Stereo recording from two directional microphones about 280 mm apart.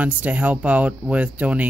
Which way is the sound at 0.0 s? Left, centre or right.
Centre.